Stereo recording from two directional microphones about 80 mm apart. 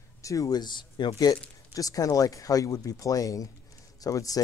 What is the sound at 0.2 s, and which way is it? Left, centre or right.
Speech, left.